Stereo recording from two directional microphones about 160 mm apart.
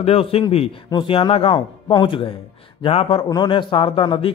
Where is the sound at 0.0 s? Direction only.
35° left (ahead or behind).